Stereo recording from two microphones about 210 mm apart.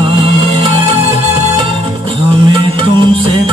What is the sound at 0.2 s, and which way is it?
Music, 25° right (ahead or behind).